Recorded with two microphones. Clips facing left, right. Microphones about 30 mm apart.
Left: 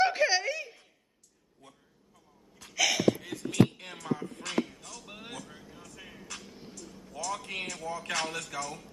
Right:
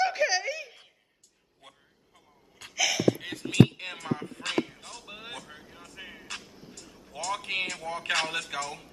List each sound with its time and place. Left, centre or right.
0.0 s giggle: centre
2.7 s gasp: centre
3.2 s a sound: right